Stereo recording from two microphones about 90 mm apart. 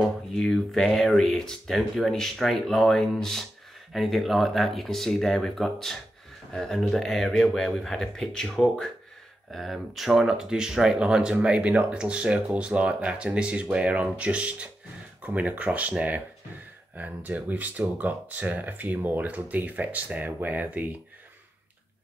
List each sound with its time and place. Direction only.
0.3 s speech: 5° left (ahead or behind); by 20.8 s 20° right (ahead or behind)